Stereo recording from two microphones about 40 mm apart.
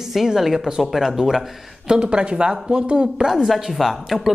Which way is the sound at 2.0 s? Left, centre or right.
Right.